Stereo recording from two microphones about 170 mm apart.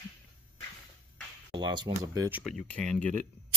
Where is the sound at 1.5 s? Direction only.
25° right (ahead or behind).